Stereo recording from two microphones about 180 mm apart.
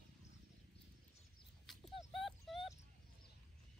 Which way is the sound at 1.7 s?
Centre (ahead or behind).